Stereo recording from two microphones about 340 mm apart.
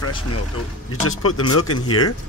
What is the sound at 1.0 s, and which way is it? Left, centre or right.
Speech, left.